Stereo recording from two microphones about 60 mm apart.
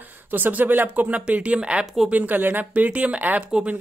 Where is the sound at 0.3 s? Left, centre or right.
Right.